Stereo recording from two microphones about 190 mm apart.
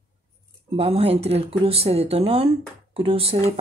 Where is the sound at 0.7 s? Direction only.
30° right (ahead or behind).